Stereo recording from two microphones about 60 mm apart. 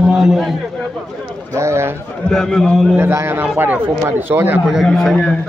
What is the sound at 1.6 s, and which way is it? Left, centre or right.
Speech, right.